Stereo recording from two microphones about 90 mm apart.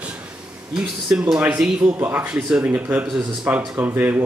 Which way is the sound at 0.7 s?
5° right (ahead or behind).